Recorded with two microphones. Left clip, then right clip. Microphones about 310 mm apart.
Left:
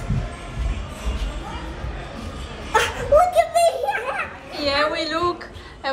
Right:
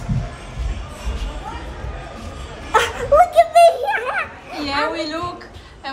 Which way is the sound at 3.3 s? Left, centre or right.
Centre.